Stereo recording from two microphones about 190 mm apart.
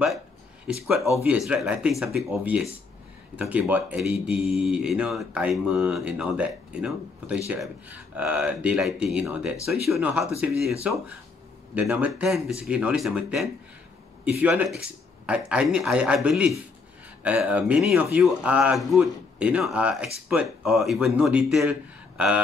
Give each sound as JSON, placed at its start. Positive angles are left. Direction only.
{"t": 1.1, "sound": "speech", "side_deg": -5}